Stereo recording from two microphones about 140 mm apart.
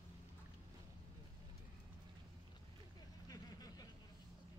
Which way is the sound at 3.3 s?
25° left (ahead or behind).